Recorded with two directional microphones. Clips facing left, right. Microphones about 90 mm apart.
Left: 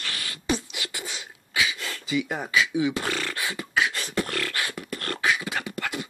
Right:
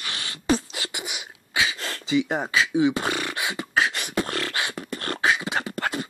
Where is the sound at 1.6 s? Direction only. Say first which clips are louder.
Right 1 dB; 35° right (ahead or behind).